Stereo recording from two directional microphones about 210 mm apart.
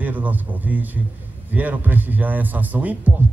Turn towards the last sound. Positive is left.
turn(degrees=-5)  # may be behind; listen again after turning